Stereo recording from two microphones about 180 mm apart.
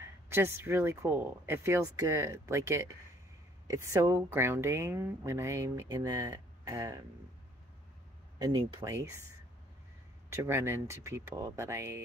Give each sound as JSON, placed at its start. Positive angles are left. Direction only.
{"t": 0.0, "sound": "speech", "side_deg": -15}
{"t": 8.4, "sound": "speech", "side_deg": -20}
{"t": 10.3, "sound": "speech", "side_deg": -15}